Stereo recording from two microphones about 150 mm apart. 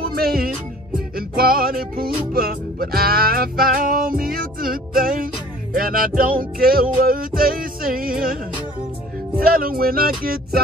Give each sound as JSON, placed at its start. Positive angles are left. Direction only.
{"t": 0.1, "sound": "music", "side_deg": -85}
{"t": 9.4, "sound": "speech", "side_deg": -75}